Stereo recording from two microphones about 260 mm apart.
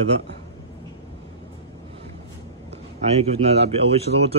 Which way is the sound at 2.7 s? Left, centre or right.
Right.